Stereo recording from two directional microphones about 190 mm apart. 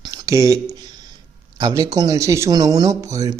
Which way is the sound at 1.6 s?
20° right (ahead or behind).